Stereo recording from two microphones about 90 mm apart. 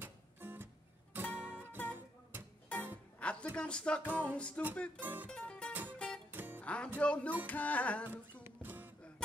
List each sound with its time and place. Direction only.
0.0 s music: 20° right (ahead or behind)
3.2 s a sound: 15° left (ahead or behind)
4.4 s music: 15° left (ahead or behind)
5.0 s speech: 20° right (ahead or behind)
5.3 s music: 10° left (ahead or behind)
5.7 s music: 20° right (ahead or behind)
5.9 s music: 10° left (ahead or behind)
6.3 s music: 20° right (ahead or behind)
6.6 s music: 15° left (ahead or behind)
8.6 s music: 20° right (ahead or behind)